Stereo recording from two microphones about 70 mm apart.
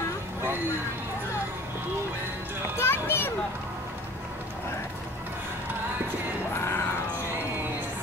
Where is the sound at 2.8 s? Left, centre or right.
Left.